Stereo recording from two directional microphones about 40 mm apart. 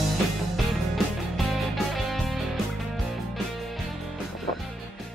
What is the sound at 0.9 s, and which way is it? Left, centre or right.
Music, centre.